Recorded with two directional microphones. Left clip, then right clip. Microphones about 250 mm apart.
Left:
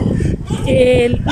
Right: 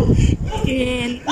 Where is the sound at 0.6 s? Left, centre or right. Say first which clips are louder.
Left 11 dB; centre.